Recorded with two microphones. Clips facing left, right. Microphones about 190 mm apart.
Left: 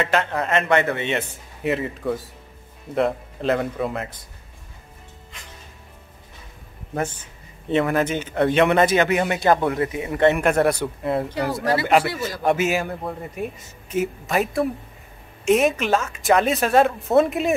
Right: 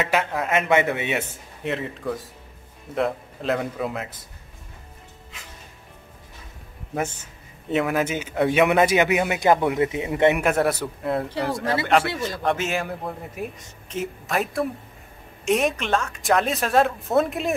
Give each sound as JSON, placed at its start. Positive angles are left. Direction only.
{"t": 0.0, "sound": "a man's voice", "side_deg": -5}
{"t": 0.6, "sound": "speech", "side_deg": -15}
{"t": 1.6, "sound": "a man's voice", "side_deg": 0}
{"t": 7.7, "sound": "speech", "side_deg": -5}
{"t": 9.7, "sound": "speech", "side_deg": -20}
{"t": 10.3, "sound": "a man's voice", "side_deg": -5}